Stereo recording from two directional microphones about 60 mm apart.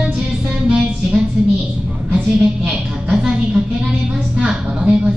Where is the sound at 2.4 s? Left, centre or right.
Centre.